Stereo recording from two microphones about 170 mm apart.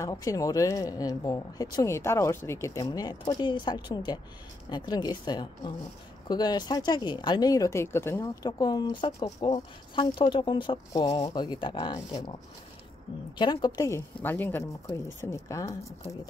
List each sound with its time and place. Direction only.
0.0 s speech: 20° left (ahead or behind)
13.4 s speech: 25° left (ahead or behind)